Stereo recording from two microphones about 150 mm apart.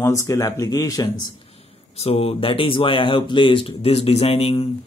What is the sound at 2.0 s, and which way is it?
Speech, 45° left (ahead or behind).